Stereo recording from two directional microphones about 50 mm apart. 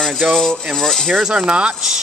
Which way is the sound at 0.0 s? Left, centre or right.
Centre.